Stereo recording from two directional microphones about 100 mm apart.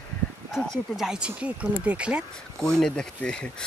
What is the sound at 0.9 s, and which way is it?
Speech, 5° right (ahead or behind).